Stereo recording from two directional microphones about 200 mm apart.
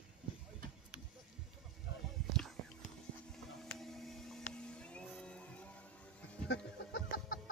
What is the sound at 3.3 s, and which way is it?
Vehicle, centre (ahead or behind).